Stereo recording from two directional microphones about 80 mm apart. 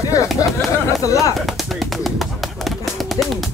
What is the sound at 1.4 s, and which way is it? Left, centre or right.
Bird, centre.